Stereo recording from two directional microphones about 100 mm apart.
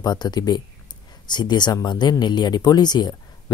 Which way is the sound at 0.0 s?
45° left (ahead or behind).